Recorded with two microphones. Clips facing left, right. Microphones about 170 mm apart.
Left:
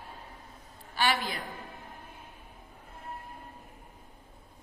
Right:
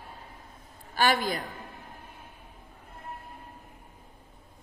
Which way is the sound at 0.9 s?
45° right (ahead or behind).